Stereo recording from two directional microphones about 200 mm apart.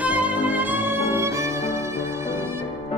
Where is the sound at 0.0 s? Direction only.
5° right (ahead or behind).